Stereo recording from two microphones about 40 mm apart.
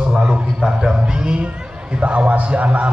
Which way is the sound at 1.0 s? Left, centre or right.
Right.